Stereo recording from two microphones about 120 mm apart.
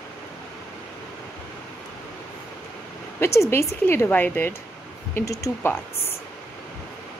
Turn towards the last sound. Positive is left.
turn(degrees=20)  # may be behind; listen again after turning